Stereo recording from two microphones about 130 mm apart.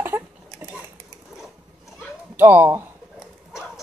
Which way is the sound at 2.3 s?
15° right (ahead or behind).